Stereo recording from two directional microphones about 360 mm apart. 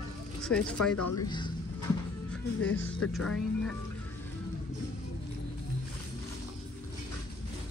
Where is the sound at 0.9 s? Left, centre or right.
Left.